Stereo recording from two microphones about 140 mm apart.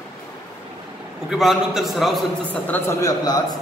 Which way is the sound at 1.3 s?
5° right (ahead or behind).